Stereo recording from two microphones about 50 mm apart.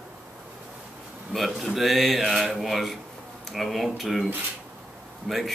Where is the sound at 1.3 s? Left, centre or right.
Centre.